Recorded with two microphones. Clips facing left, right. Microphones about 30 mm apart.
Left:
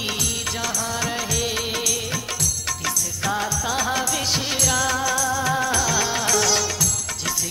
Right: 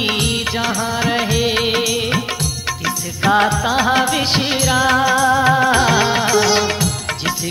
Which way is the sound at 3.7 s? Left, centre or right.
Right.